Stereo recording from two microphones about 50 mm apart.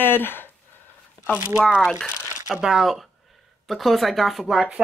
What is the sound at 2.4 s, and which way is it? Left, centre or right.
Speech, centre.